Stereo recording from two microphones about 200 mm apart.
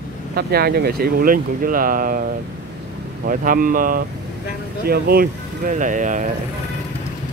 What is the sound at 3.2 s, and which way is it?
Speech, 45° right (ahead or behind).